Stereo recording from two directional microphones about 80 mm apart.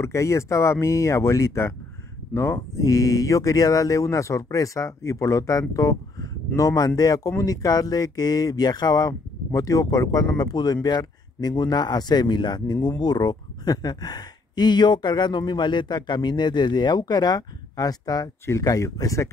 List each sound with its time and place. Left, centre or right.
0.0 s speech: left
9.5 s speech: left